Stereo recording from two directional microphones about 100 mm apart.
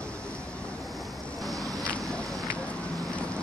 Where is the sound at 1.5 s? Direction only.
35° right (ahead or behind).